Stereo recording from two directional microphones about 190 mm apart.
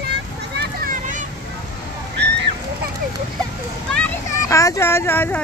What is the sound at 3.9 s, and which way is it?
A child's voice, 10° left (ahead or behind).